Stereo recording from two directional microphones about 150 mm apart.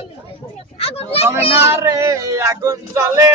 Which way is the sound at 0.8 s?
40° left (ahead or behind).